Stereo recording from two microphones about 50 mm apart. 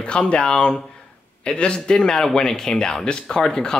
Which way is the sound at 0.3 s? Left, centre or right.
Centre.